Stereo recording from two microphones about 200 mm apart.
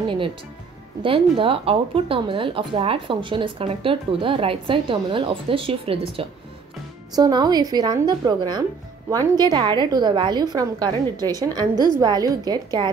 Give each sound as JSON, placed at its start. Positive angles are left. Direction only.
{"t": 1.0, "sound": "speech", "side_deg": -25}